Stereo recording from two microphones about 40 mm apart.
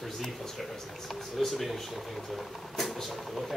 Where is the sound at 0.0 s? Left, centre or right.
Centre.